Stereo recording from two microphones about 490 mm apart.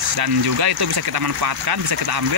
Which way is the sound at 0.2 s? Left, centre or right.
Right.